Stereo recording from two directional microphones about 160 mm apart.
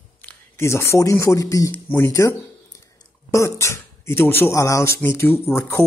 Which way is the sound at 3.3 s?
15° left (ahead or behind).